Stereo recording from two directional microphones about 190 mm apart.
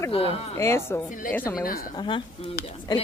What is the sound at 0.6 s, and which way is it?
Speech, 15° left (ahead or behind).